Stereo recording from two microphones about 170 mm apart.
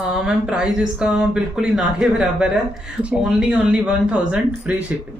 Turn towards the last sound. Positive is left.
turn(degrees=-5)  # may be behind; listen again after turning